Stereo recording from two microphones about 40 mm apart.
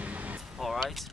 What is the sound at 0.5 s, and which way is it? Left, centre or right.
Speech, centre.